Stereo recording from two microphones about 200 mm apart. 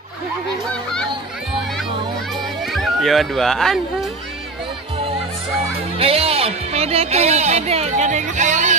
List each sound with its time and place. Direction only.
2.6 s music: centre (ahead or behind)
4.9 s music: 30° right (ahead or behind)